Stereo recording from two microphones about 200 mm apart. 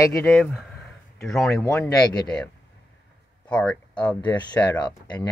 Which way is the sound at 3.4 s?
5° left (ahead or behind).